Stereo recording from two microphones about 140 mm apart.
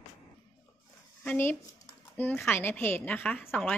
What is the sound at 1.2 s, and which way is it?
A woman's voice, 15° left (ahead or behind).